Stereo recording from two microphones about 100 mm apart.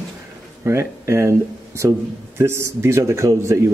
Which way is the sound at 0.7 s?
30° right (ahead or behind).